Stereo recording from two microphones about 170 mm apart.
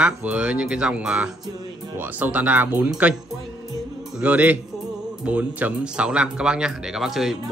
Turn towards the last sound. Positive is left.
turn(degrees=0)  # may be behind; listen again after turning